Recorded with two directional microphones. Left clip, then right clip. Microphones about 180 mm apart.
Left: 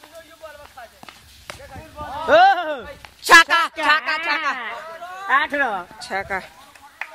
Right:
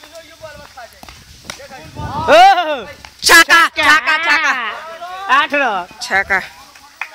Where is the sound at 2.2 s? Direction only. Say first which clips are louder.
Right 6 dB; 35° right (ahead or behind).